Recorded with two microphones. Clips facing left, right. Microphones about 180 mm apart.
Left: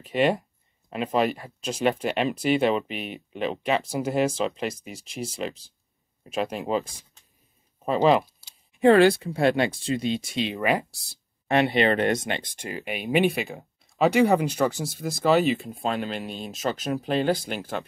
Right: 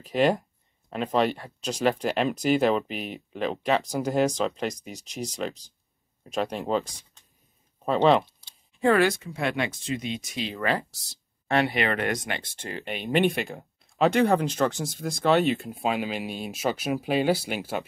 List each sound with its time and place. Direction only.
0.0 s speech: centre (ahead or behind)
1.6 s speech: 35° right (ahead or behind)
1.9 s speech: centre (ahead or behind)
7.8 s a sound: 5° left (ahead or behind)
8.8 s speech: 30° left (ahead or behind)
12.5 s speech: 10° left (ahead or behind); by 17.8 s 10° right (ahead or behind)